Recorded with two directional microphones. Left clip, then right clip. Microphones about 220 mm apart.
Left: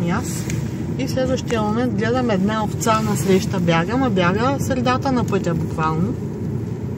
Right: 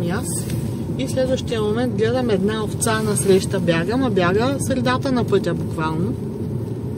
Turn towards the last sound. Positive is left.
turn(degrees=-5)  # may be behind; listen again after turning